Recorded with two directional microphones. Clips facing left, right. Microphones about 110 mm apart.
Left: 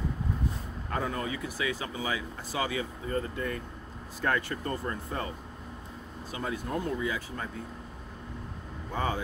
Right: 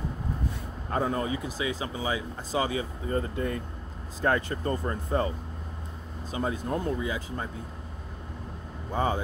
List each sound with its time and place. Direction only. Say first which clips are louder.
0.8 s speech: right 4 dB; 30° right (ahead or behind)
6.3 s speech: right 3 dB; 25° right (ahead or behind)
8.9 s speech: right 4 dB; 30° right (ahead or behind)